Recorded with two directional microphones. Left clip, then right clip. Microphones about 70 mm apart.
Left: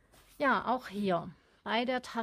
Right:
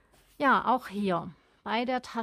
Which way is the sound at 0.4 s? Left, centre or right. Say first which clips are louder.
Right 5 dB; right.